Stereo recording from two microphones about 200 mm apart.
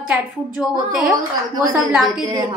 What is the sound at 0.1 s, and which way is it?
A woman's voice, 5° right (ahead or behind).